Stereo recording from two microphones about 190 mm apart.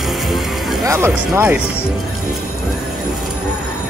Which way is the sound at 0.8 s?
15° right (ahead or behind).